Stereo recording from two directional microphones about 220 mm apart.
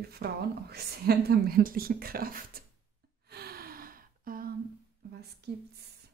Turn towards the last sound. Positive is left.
turn(degrees=-50)  # may be behind; listen again after turning